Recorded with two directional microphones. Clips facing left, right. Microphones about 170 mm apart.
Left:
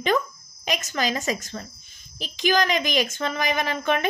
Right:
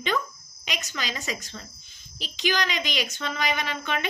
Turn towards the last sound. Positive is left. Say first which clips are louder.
# left 6 dB
turn(degrees=45)  # may be behind; listen again after turning